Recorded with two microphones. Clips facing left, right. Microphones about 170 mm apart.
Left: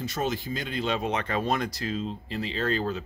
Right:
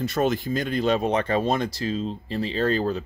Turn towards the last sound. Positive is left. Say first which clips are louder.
# right 5 dB
turn(degrees=-35)  # may be behind; listen again after turning